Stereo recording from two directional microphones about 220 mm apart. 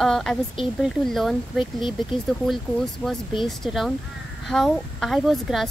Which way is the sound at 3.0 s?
Centre (ahead or behind).